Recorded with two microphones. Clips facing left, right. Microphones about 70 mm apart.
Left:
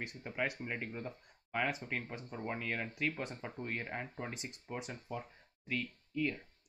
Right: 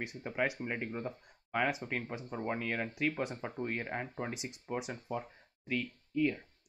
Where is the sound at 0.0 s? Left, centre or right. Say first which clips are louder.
Right 4 dB; centre.